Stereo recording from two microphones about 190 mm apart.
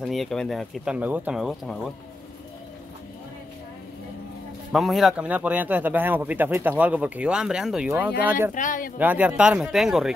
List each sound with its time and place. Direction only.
0.0 s speech: centre (ahead or behind)
4.7 s speech: centre (ahead or behind)
8.5 s speech: 45° left (ahead or behind)
8.9 s speech: 10° right (ahead or behind)